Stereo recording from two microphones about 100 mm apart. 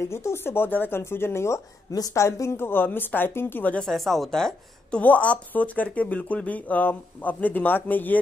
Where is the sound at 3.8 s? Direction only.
Centre (ahead or behind).